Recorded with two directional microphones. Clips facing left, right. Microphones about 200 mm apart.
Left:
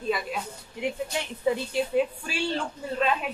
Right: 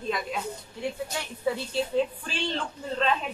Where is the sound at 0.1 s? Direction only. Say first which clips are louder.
Left 1 dB; 10° left (ahead or behind).